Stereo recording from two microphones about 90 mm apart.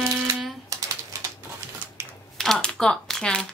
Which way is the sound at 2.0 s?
25° right (ahead or behind).